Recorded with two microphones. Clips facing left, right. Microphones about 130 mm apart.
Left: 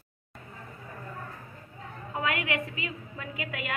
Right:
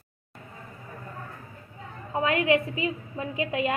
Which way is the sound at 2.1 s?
30° right (ahead or behind).